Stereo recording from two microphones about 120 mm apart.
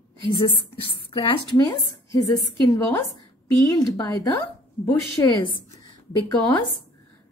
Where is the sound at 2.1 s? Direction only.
30° left (ahead or behind).